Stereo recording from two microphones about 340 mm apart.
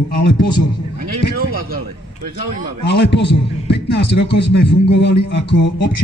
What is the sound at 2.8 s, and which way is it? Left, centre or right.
Speech, left.